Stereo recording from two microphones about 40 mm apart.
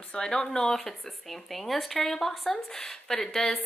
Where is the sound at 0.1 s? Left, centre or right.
Centre.